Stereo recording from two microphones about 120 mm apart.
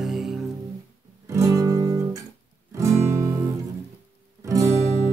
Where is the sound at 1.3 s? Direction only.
25° right (ahead or behind).